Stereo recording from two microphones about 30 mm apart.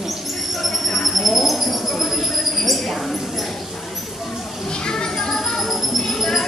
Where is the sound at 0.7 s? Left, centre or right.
Centre.